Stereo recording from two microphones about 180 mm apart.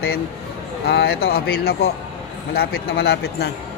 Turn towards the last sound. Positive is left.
turn(degrees=65)  # may be behind; listen again after turning